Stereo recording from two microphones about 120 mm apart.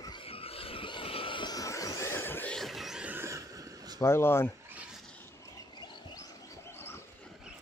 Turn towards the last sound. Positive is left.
turn(degrees=20)  # may be behind; listen again after turning